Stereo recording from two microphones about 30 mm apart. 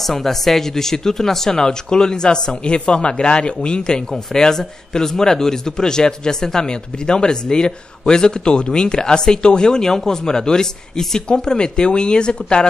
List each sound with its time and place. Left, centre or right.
0.0 s speech: centre; by 4.0 s left
4.1 s speech: centre